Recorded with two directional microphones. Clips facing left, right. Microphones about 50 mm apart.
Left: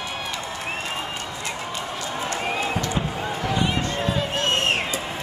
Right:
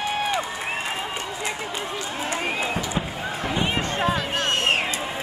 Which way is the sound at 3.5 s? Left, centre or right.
Right.